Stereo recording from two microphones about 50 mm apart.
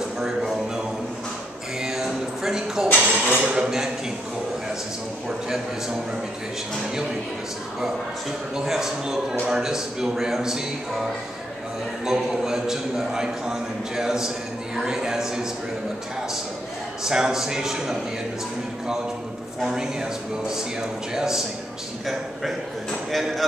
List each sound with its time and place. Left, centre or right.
0.2 s speech: centre
1.8 s a sound: centre
3.1 s cutlery: centre
8.5 s a man's voice: centre
12.1 s a man's voice: centre
17.0 s a man's voice: centre
19.6 s a man's voice: centre
23.1 s speech: centre